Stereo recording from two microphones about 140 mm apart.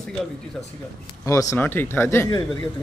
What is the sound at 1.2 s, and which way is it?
A man's voice, 20° left (ahead or behind).